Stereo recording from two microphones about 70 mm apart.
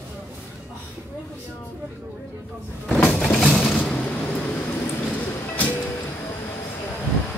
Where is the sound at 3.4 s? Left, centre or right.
Centre.